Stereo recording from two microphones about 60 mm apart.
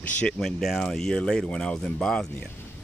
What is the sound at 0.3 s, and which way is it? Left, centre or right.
Speech, centre.